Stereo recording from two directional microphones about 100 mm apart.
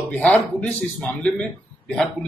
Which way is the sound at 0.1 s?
15° left (ahead or behind).